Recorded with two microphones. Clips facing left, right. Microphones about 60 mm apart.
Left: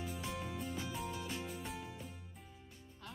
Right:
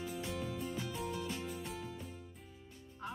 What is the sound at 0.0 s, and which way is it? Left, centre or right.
Music, centre.